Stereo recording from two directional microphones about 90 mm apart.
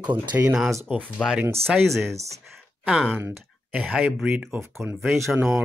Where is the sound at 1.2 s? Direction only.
5° left (ahead or behind).